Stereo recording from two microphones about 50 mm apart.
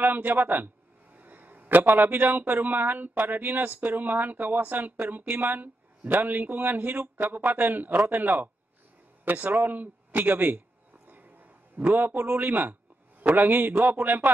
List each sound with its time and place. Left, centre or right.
0.0 s a man's voice: right
11.1 s a sound: right
13.2 s a man's voice: right